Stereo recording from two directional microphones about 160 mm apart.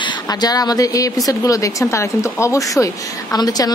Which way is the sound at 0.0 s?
25° left (ahead or behind).